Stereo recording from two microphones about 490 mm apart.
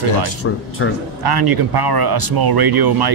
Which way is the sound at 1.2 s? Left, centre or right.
Right.